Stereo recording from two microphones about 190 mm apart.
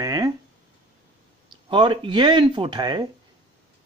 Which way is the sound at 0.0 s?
20° right (ahead or behind).